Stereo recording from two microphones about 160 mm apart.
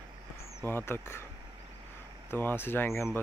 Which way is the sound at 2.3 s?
15° left (ahead or behind).